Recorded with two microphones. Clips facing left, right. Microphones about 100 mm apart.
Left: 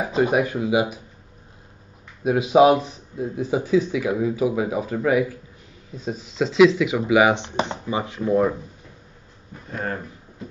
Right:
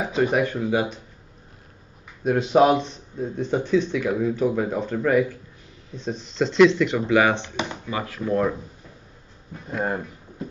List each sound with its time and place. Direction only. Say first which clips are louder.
0.2 s a man's voice: left 1 dB; 10° left (ahead or behind)
2.2 s a man's voice: left 2 dB; 5° left (ahead or behind)
9.7 s speech: right 3 dB; 15° right (ahead or behind)